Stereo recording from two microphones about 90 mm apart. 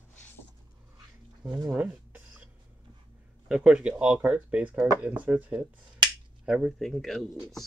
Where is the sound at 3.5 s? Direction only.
10° right (ahead or behind).